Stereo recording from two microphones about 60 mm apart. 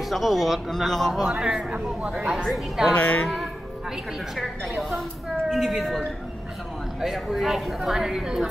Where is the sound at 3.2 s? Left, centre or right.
Centre.